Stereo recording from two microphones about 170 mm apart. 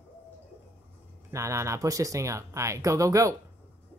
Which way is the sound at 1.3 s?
15° right (ahead or behind).